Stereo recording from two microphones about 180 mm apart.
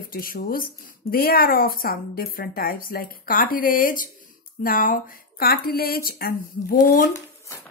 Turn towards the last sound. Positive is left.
turn(degrees=50)  # may be behind; listen again after turning